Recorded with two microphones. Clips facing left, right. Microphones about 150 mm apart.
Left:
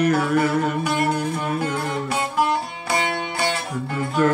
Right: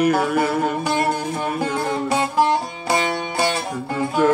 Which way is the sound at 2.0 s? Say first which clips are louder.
Right 4 dB; 30° right (ahead or behind).